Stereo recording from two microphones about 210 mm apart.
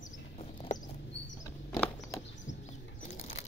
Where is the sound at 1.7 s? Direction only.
5° left (ahead or behind).